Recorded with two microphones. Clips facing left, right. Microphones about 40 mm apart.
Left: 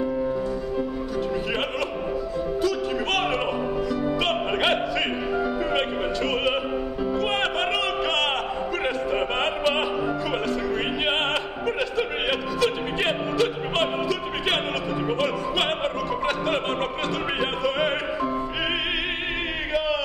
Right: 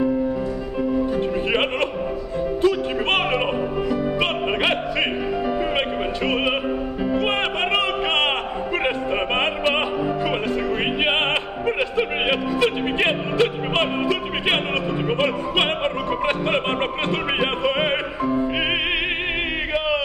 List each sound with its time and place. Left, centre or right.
1.1 s music: right
5.8 s music: right
8.8 s opera: right
11.6 s music: right